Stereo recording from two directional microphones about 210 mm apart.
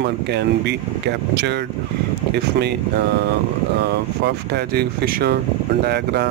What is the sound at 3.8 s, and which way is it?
Speech, 50° right (ahead or behind).